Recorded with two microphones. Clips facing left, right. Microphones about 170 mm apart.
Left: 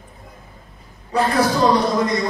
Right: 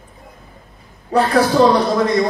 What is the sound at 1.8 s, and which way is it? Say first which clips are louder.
Speech: right 3 dB; 65° right (ahead or behind).